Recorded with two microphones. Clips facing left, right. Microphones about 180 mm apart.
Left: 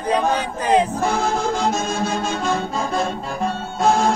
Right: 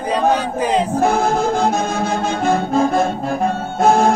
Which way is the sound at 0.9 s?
55° right (ahead or behind).